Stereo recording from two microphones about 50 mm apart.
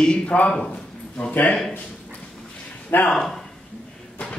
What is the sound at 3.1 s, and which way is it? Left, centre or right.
Speech, centre.